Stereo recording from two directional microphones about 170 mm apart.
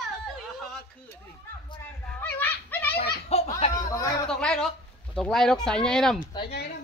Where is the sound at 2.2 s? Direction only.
10° left (ahead or behind).